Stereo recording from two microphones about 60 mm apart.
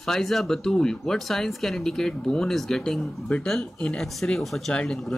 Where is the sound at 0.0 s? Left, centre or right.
Centre.